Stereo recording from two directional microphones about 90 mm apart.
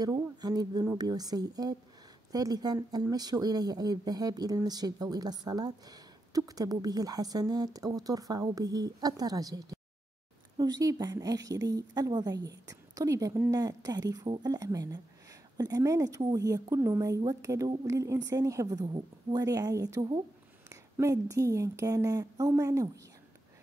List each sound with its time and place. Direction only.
0.0 s a woman's voice: 50° right (ahead or behind)
20.7 s speech: 35° right (ahead or behind)